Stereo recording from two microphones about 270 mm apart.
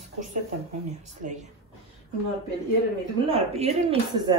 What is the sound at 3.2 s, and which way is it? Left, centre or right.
Speech, right.